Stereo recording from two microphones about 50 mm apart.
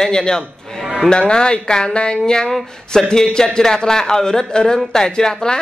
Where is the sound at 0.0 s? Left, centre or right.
Centre.